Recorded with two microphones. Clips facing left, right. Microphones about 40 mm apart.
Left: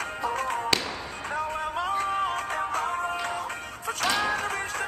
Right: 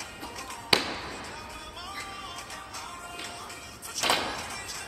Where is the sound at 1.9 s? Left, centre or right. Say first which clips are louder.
Left 12 dB; left.